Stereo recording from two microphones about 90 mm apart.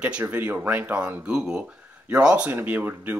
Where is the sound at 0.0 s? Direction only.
15° right (ahead or behind).